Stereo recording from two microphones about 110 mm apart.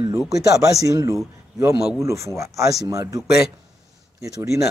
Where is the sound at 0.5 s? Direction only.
30° right (ahead or behind).